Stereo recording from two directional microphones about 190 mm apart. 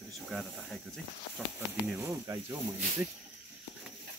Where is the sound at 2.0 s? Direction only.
15° right (ahead or behind).